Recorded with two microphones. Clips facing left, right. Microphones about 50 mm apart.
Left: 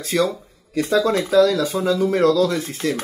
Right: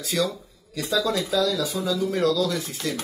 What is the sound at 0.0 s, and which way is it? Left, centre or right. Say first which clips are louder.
Speech: left 5 dB; left.